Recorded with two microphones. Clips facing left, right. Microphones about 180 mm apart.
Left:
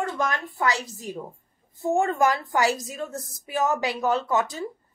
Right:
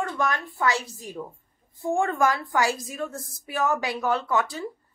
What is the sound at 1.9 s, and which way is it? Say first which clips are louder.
Speech: left 1 dB; 20° left (ahead or behind).